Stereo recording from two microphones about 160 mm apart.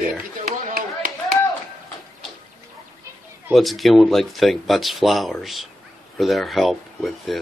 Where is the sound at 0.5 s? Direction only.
60° right (ahead or behind).